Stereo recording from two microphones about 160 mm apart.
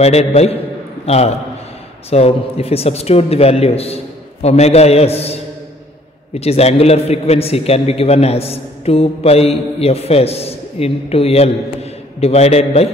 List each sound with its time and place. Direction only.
0.0 s a man's voice: 40° left (ahead or behind)
6.4 s a man's voice: 40° left (ahead or behind)